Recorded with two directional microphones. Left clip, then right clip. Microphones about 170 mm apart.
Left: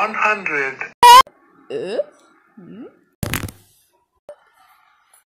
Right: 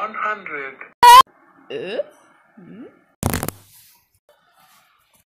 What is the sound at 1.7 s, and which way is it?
Speech, 25° left (ahead or behind).